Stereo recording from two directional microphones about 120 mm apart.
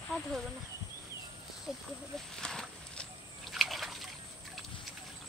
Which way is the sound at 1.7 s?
5° right (ahead or behind).